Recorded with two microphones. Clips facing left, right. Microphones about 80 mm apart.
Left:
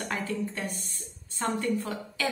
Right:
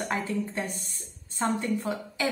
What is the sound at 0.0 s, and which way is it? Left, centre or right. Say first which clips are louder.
A woman's voice: right 2 dB; centre.